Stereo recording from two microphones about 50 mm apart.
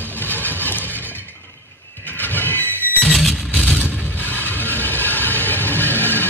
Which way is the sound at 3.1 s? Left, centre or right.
Centre.